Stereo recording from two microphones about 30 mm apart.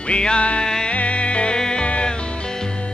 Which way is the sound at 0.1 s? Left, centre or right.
Left.